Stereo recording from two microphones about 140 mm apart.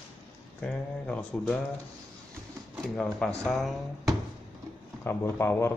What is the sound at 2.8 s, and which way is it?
Speech, 5° left (ahead or behind).